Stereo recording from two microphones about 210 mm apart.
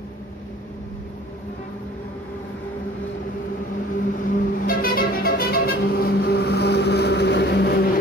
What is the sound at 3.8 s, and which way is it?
Music, 40° left (ahead or behind).